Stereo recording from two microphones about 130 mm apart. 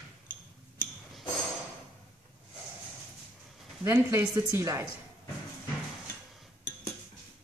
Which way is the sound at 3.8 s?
25° right (ahead or behind).